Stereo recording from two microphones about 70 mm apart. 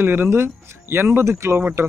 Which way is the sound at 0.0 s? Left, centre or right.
Right.